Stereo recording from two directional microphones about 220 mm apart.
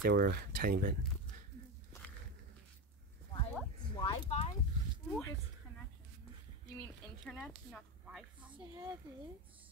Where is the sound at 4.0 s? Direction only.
25° left (ahead or behind).